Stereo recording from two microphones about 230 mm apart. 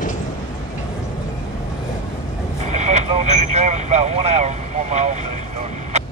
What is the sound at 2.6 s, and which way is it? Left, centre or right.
Vehicle, right.